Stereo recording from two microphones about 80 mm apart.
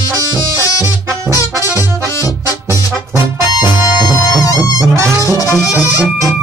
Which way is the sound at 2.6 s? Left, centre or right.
Right.